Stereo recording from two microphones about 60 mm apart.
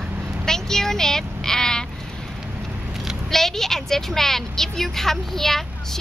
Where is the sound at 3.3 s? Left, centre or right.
Centre.